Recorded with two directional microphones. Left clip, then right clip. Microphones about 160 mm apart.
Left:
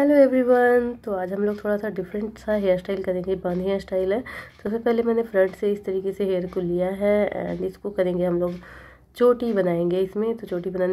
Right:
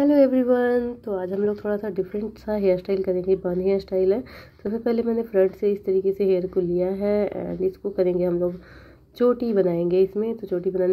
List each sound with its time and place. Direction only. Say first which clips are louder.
0.0 s speech: left 1 dB; 20° right (ahead or behind)